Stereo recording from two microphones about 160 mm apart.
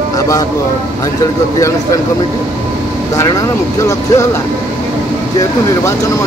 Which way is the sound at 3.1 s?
20° left (ahead or behind).